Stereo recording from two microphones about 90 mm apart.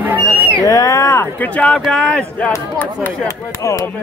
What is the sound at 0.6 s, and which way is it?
Speech, 40° left (ahead or behind).